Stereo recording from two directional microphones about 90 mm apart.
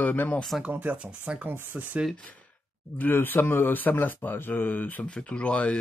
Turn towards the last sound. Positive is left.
turn(degrees=15)  # may be behind; listen again after turning